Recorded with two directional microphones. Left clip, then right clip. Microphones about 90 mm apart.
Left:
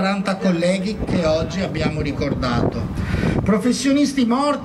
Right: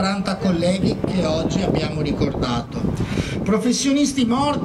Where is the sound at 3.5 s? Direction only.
45° right (ahead or behind).